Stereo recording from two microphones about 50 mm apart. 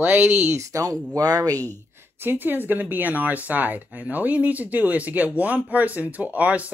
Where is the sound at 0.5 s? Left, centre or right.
Right.